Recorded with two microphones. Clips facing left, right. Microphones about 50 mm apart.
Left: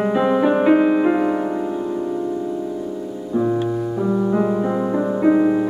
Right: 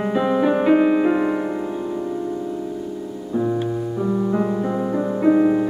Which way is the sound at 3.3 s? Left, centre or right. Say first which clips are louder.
Left 2 dB; centre.